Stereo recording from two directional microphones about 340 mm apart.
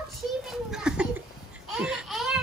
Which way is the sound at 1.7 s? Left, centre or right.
Centre.